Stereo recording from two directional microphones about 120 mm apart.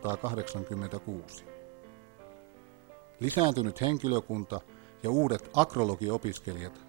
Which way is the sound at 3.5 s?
30° right (ahead or behind).